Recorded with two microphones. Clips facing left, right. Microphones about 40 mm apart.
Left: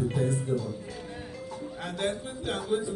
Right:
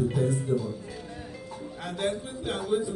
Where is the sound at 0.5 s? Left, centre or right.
Right.